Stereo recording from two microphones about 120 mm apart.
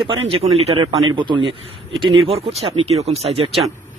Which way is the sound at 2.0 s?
55° right (ahead or behind).